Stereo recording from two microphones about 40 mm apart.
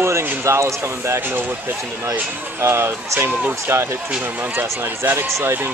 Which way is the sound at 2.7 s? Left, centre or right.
Right.